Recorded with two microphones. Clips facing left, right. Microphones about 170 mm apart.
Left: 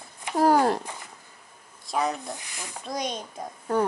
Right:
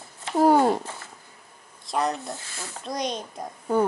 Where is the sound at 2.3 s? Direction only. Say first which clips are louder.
Right 1 dB; 15° left (ahead or behind).